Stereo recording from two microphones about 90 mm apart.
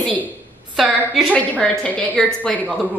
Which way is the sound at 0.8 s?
5° right (ahead or behind).